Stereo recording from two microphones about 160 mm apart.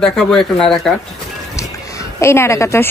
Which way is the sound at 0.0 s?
Centre (ahead or behind).